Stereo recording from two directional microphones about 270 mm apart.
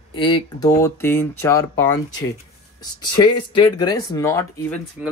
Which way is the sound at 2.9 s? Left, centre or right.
Centre.